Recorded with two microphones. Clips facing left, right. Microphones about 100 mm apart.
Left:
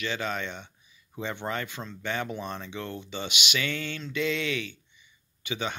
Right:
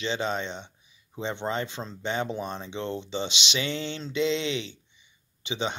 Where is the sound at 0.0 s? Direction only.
25° right (ahead or behind).